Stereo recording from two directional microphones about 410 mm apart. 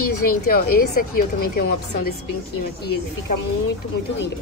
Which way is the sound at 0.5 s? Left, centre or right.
Left.